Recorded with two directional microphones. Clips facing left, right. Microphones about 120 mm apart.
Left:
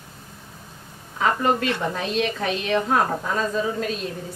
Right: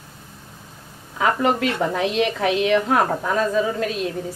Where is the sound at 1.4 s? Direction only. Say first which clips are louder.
Right 2 dB; 90° right.